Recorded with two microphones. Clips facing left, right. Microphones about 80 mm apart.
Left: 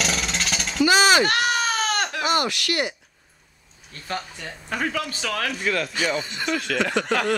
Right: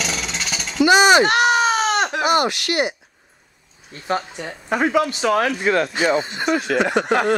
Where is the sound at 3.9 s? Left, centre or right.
Right.